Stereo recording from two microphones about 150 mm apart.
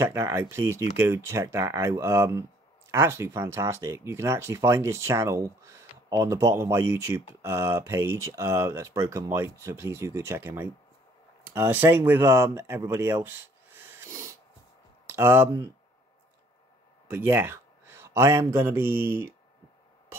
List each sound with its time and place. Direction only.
0.0 s speech: 20° right (ahead or behind)
17.1 s speech: 15° right (ahead or behind)